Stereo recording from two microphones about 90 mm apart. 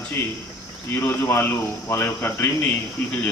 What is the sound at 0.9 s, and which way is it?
A man's voice, 25° left (ahead or behind).